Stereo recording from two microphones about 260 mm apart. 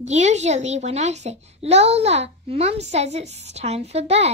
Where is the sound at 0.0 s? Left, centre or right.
Right.